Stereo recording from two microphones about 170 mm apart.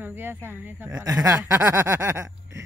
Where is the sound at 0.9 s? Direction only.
20° right (ahead or behind).